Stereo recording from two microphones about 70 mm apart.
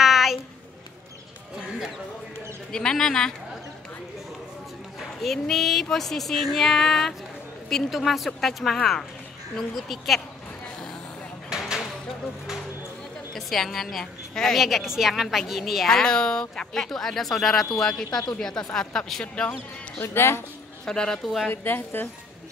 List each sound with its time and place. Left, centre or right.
0.0 s a sound: centre
2.7 s speech: centre
5.2 s a woman's voice: centre
13.3 s a woman's voice: centre
20.0 s a woman's voice: left
20.8 s speech: centre
21.5 s a woman's voice: left